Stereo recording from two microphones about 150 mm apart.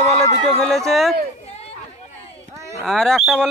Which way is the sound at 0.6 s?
Centre (ahead or behind).